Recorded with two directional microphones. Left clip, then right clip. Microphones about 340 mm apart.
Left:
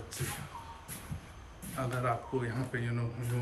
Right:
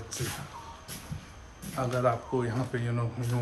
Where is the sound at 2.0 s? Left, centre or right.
Centre.